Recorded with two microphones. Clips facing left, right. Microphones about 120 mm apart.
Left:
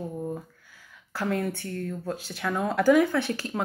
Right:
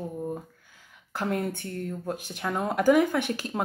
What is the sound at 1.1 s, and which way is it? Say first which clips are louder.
A woman's voice: left 1 dB; 20° right (ahead or behind).